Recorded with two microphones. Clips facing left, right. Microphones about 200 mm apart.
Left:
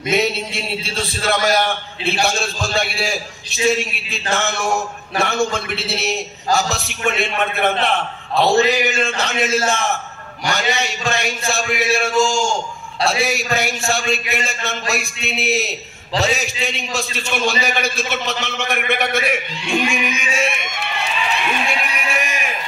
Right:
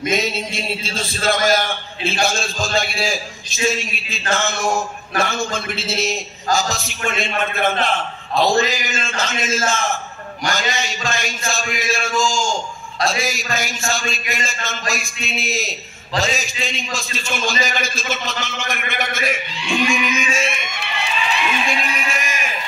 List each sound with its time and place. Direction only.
0.1 s a man's voice: 65° left (ahead or behind)
19.9 s music: 65° left (ahead or behind)
21.6 s a sound: 65° left (ahead or behind)